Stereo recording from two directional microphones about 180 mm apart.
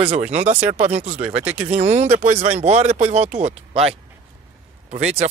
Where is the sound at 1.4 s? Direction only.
10° right (ahead or behind).